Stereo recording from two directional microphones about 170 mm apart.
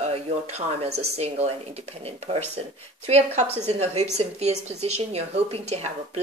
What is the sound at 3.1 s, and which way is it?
Speech, 40° right (ahead or behind).